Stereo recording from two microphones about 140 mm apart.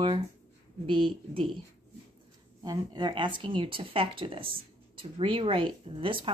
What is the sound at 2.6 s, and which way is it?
A woman's voice, 30° right (ahead or behind).